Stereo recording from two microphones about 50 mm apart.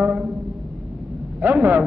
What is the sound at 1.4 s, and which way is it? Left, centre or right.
Speech, right.